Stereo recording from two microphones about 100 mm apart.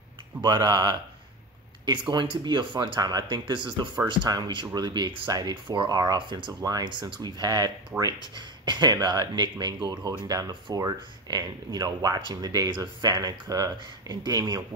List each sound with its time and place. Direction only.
0.4 s speech: 45° right (ahead or behind)
7.9 s speech: 25° right (ahead or behind)
8.4 s speech: 50° right (ahead or behind)